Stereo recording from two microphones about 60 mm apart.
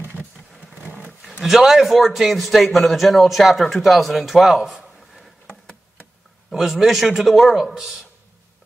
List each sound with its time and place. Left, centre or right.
0.8 s roaring cats: right
1.4 s a man's voice: centre
6.5 s a man's voice: centre